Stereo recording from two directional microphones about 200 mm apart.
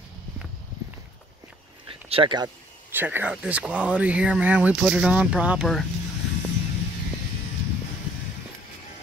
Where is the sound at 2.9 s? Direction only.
10° right (ahead or behind).